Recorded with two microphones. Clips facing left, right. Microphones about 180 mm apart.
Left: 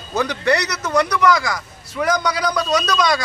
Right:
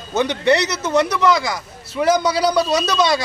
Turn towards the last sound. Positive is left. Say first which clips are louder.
# right 1 dB
turn(degrees=-25)  # may be behind; listen again after turning